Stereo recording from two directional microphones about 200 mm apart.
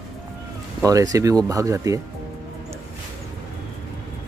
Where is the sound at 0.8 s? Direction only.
15° right (ahead or behind).